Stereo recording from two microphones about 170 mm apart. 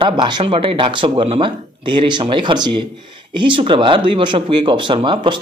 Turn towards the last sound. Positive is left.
turn(degrees=-30)  # may be behind; listen again after turning